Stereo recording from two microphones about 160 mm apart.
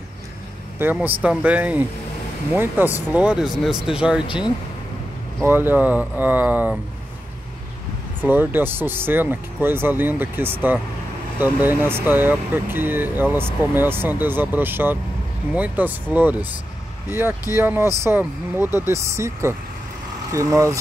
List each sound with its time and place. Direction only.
0.7 s speech: 10° right (ahead or behind)
5.4 s speech: 15° right (ahead or behind)
8.2 s speech: 10° right (ahead or behind)